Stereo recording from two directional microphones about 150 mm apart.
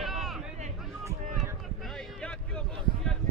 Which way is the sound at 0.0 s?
Centre (ahead or behind).